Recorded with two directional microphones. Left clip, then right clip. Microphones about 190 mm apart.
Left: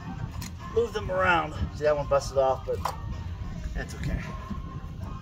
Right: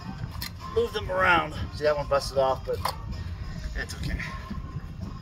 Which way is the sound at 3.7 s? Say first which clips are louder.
Right 3 dB; 20° left (ahead or behind).